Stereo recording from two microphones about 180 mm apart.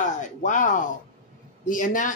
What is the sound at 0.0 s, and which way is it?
Speech, 45° left (ahead or behind).